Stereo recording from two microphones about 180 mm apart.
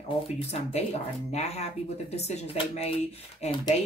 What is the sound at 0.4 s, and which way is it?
Speech, 35° left (ahead or behind).